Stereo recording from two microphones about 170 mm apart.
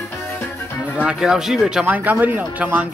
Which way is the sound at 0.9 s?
5° right (ahead or behind).